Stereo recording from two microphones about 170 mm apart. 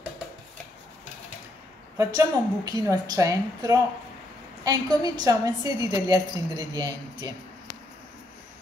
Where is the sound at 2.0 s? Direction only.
20° right (ahead or behind).